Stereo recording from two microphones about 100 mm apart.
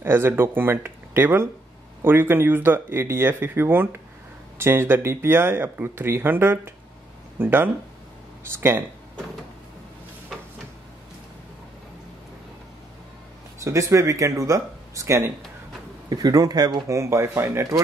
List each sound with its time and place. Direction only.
0.0 s speech: 20° right (ahead or behind)
10.3 s a sound: centre (ahead or behind)
13.6 s speech: 30° right (ahead or behind)
16.1 s speech: 40° right (ahead or behind)